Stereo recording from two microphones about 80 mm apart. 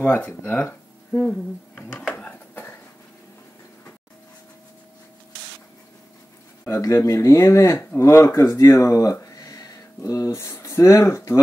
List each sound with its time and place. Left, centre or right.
0.0 s speech: left
2.1 s a sound: left
6.6 s speech: left